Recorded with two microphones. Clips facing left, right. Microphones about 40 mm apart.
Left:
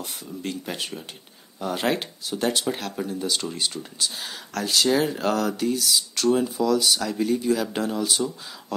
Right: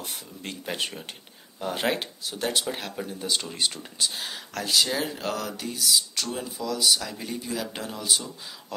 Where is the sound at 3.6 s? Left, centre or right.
Right.